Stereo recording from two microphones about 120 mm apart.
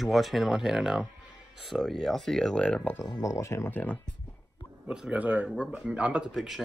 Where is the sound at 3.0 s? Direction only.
30° left (ahead or behind).